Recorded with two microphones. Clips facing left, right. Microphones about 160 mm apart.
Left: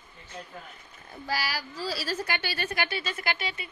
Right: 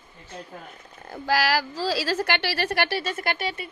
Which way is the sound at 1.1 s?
90° right.